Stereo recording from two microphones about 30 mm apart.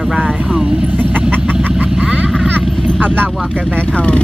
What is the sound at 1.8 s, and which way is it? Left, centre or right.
Vehicle, right.